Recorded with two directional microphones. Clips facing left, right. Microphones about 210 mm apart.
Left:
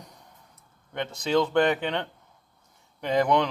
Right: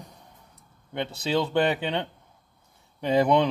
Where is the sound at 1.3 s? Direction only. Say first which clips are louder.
Left 2 dB; 15° right (ahead or behind).